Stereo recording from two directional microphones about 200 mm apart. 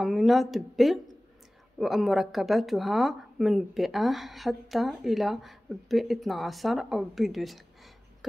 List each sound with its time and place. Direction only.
0.0 s speech: centre (ahead or behind)